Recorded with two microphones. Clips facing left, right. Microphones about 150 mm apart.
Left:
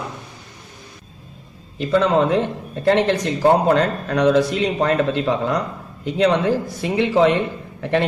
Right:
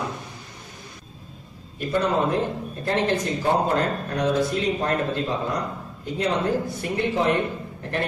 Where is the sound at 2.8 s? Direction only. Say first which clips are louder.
Left 6 dB; 80° left.